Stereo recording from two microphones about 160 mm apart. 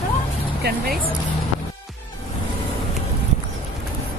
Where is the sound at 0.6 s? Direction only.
90° right.